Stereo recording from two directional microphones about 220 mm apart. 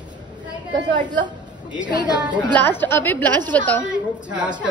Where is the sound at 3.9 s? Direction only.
5° right (ahead or behind).